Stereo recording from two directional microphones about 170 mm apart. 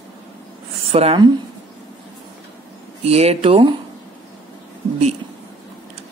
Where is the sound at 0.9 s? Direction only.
30° right (ahead or behind).